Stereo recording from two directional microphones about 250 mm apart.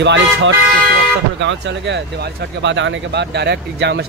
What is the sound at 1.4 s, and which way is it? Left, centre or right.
Speech, right.